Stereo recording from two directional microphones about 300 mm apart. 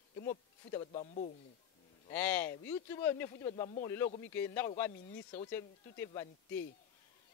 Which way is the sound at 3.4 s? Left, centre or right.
Centre.